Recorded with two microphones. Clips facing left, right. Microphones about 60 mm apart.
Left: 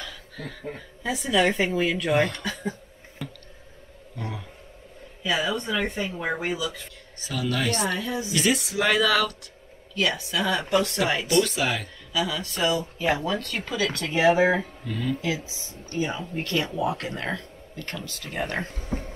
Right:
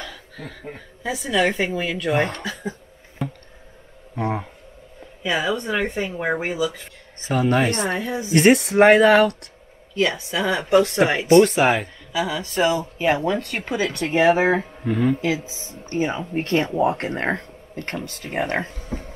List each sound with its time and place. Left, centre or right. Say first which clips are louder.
0.0 s a woman's voice: right 2 dB; centre
2.1 s speech: right 2 dB; right
2.4 s speech: right 1 dB; centre
4.1 s speech: right 11 dB; right
5.2 s a woman's voice: right 3 dB; right
8.4 s speech: right 11 dB; right
9.9 s a woman's voice: right 4 dB; right
18.8 s speech: even; centre